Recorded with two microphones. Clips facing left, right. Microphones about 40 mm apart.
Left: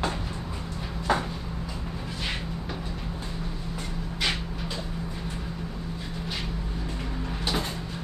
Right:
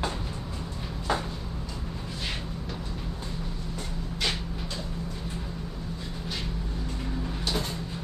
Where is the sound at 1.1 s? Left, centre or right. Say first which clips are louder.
Left 3 dB; centre.